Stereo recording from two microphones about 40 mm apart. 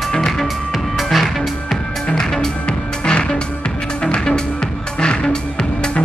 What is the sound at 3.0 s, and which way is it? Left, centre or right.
Music, left.